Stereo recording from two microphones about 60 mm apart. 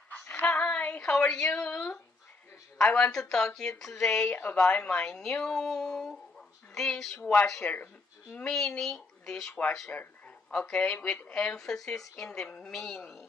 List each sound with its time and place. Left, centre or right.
0.1 s female singing: left
0.7 s a sound: left
1.0 s speech: centre
1.7 s a woman's voice: left
2.8 s speech: centre
4.4 s a woman's voice: left
4.8 s speech: centre
7.6 s a woman's voice: left
8.5 s speech: centre
9.8 s speech: left
10.5 s speech: centre
11.5 s speech: centre